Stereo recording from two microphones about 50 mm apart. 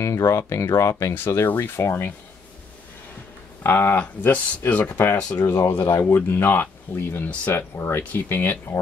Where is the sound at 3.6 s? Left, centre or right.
Left.